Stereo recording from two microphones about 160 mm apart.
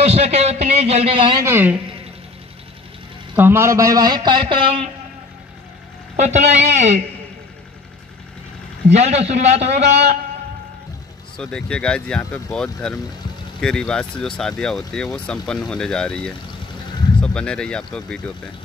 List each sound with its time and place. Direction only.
0.0 s a man's voice: 40° right (ahead or behind)
1.4 s a woman's voice: 15° right (ahead or behind)
3.3 s a man's voice: 15° right (ahead or behind); by 4.8 s 35° right (ahead or behind)
6.1 s a man's voice: 45° right (ahead or behind)
8.9 s a man's voice: 45° right (ahead or behind)
11.3 s speech: 5° left (ahead or behind)